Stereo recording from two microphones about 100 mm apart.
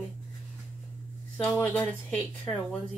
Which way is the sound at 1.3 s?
10° left (ahead or behind).